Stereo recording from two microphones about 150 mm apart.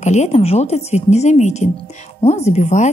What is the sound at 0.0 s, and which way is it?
A woman's voice, 50° left (ahead or behind).